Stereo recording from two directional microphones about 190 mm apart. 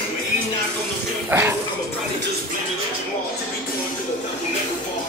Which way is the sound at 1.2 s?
10° right (ahead or behind).